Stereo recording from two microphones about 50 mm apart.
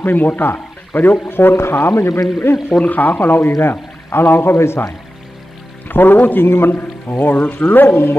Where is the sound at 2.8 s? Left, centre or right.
Left.